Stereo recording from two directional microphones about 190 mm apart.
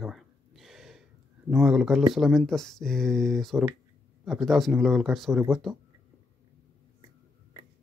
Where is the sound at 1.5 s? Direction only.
5° right (ahead or behind).